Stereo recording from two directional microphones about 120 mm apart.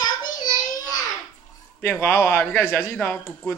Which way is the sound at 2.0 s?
15° left (ahead or behind).